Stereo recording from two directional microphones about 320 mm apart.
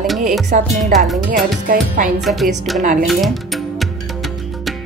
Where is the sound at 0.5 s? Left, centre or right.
Right.